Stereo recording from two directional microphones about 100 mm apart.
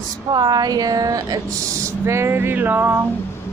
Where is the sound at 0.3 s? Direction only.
45° right (ahead or behind); by 3.1 s 20° right (ahead or behind).